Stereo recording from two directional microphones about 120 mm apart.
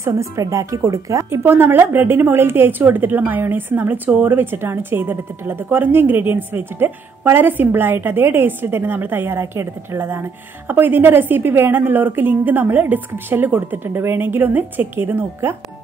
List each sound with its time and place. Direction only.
0.0 s speech: 25° right (ahead or behind)